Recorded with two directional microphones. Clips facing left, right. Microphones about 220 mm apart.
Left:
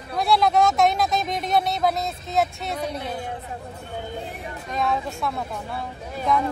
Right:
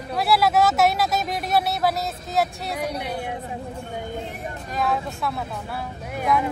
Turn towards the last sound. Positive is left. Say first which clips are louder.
# right 1 dB
turn(degrees=-10)  # may be behind; listen again after turning